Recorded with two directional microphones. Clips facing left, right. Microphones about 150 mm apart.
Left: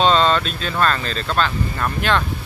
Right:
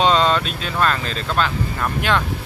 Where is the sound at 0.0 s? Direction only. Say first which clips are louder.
Left 1 dB; 15° right (ahead or behind).